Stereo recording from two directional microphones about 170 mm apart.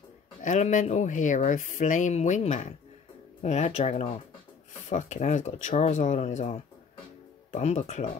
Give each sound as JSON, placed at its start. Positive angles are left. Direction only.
{"t": 0.4, "sound": "speech", "side_deg": 45}